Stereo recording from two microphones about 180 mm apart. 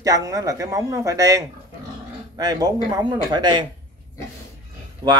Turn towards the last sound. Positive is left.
turn(degrees=-20)  # may be behind; listen again after turning